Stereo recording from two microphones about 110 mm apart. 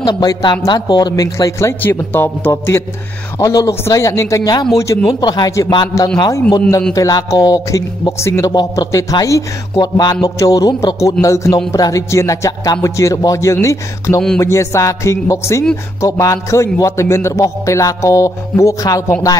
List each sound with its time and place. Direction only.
0.0 s a man's voice: 40° left (ahead or behind); by 2.8 s 20° left (ahead or behind)
3.3 s a man's voice: 30° left (ahead or behind)
5.9 s a man's voice: 30° left (ahead or behind)